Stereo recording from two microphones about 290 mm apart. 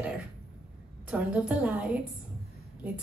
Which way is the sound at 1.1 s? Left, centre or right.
Centre.